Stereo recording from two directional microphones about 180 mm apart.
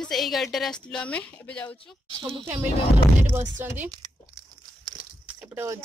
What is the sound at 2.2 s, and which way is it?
Music, 25° right (ahead or behind).